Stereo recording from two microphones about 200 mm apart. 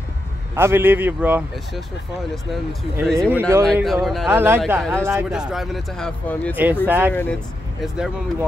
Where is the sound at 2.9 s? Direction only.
55° left (ahead or behind).